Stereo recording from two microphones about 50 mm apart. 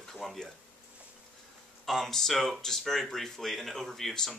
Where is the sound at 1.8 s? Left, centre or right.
Centre.